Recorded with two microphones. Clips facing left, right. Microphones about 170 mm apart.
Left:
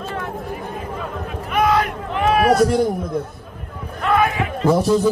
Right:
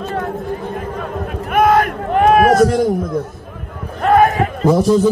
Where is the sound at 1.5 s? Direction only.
50° right (ahead or behind).